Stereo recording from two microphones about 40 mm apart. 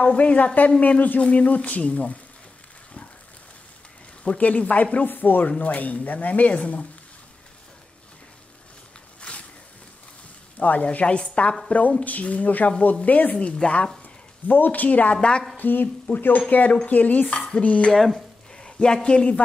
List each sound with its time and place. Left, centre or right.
0.0 s speech: left
4.4 s speech: left
5.0 s speech: left
5.6 s speech: left
9.3 s a sound: left
10.6 s speech: left
12.0 s speech: left
13.4 s speech: left
14.0 s speech: left
15.1 s music: left
15.5 s speech: left
17.9 s a sound: centre
19.0 s music: left